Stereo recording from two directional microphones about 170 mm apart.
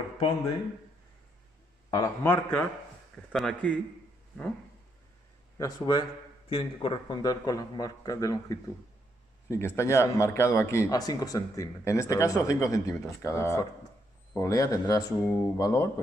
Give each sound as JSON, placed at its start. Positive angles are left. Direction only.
{"t": 1.9, "sound": "a man's voice", "side_deg": 20}
{"t": 3.3, "sound": "speech", "side_deg": 0}
{"t": 5.6, "sound": "a man's voice", "side_deg": 25}